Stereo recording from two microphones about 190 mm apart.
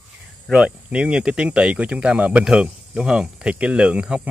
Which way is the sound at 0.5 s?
5° right (ahead or behind).